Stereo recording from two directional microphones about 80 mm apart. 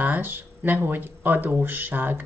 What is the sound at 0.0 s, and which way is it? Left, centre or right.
Speech, right.